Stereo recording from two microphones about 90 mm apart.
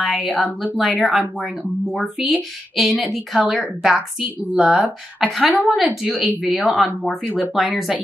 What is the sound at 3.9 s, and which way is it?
A woman's voice, 15° right (ahead or behind).